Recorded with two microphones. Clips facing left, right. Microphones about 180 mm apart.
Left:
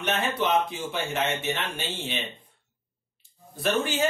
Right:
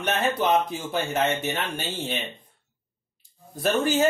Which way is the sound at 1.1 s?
40° right (ahead or behind).